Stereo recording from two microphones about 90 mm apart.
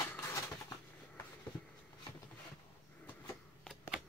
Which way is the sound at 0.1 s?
25° left (ahead or behind).